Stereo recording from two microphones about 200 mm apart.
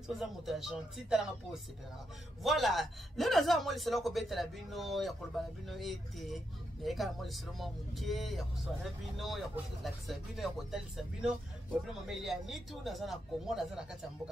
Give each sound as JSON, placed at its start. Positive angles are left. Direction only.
{"t": 0.2, "sound": "a man's voice", "side_deg": 0}